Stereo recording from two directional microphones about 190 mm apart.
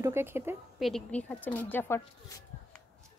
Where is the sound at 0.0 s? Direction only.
10° right (ahead or behind).